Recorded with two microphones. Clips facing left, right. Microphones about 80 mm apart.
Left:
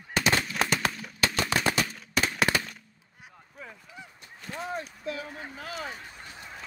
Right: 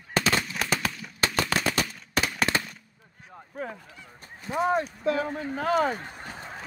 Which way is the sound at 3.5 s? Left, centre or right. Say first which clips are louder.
Right 9 dB; right.